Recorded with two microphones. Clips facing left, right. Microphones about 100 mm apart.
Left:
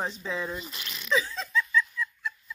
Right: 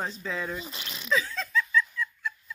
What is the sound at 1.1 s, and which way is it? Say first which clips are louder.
Laughter: left 1 dB; centre (ahead or behind).